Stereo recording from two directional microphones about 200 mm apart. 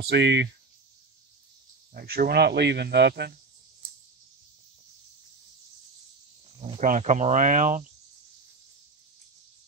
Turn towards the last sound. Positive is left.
turn(degrees=-40)  # may be behind; listen again after turning